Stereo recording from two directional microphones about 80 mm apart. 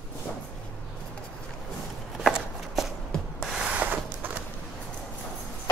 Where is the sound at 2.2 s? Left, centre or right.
Centre; by 4.4 s right.